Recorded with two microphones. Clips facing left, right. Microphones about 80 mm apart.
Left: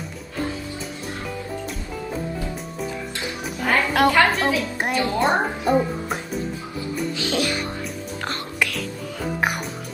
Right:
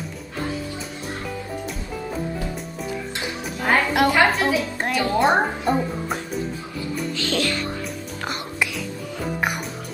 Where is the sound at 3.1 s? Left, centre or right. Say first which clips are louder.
Even; right.